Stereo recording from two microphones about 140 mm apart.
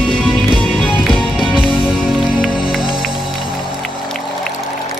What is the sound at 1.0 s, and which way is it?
Music, centre (ahead or behind).